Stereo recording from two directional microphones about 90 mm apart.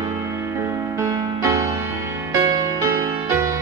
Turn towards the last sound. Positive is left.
turn(degrees=-30)  # may be behind; listen again after turning